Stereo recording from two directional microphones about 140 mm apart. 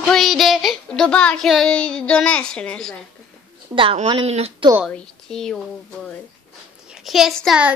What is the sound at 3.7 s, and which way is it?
Speech, 45° right (ahead or behind).